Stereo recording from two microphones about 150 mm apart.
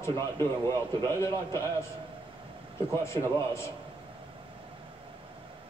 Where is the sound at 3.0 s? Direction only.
20° left (ahead or behind).